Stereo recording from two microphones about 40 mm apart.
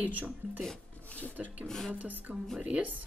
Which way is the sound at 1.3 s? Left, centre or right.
Right.